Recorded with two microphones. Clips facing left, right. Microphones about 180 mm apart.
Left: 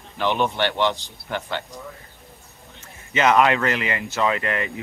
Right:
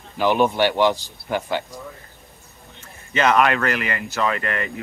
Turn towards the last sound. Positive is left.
turn(degrees=20)  # may be behind; listen again after turning